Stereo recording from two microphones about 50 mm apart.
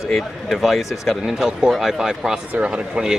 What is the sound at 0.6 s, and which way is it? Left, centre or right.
A man's voice, centre.